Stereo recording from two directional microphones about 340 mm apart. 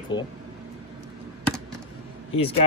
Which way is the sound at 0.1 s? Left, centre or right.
Centre.